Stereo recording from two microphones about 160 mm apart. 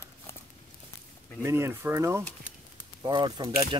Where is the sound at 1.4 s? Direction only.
15° right (ahead or behind).